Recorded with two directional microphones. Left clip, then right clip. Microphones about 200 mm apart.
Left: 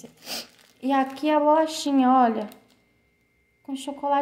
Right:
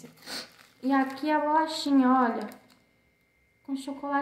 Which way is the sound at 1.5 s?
55° left (ahead or behind).